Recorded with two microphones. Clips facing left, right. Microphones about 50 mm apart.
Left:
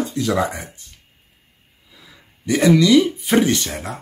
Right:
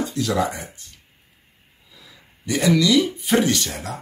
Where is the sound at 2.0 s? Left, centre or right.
Left.